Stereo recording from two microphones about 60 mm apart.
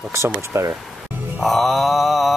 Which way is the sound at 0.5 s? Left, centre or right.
Right.